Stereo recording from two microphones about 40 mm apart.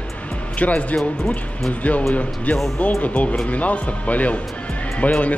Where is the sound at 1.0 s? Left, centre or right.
Centre.